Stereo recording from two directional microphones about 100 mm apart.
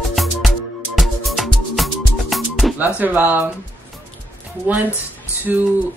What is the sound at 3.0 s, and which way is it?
Speech, 15° right (ahead or behind).